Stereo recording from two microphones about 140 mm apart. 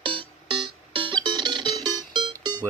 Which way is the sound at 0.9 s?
35° right (ahead or behind).